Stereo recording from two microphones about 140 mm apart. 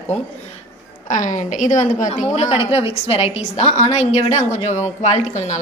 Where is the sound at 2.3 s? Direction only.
45° left (ahead or behind).